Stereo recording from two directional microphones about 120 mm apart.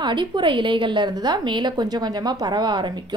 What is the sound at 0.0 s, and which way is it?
A woman's voice, 40° right (ahead or behind).